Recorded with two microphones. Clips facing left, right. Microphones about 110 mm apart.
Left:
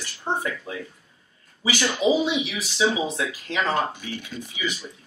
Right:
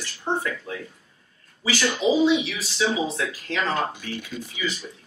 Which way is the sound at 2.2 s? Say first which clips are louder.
Right 5 dB; 15° left (ahead or behind).